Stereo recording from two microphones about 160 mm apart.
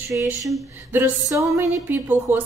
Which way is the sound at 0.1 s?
10° right (ahead or behind).